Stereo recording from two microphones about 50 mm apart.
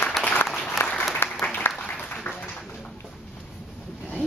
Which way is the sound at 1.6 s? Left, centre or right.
Left.